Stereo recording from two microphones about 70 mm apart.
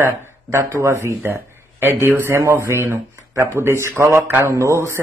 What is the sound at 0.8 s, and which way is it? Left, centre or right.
Speech, right.